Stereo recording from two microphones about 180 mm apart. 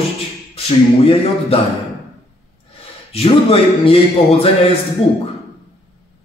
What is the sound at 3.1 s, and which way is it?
A man's voice, 30° left (ahead or behind).